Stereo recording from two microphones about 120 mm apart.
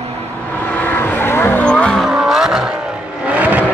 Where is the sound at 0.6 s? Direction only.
15° left (ahead or behind); by 3.6 s 10° right (ahead or behind).